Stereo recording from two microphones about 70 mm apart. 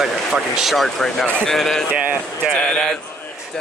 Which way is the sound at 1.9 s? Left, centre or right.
Right.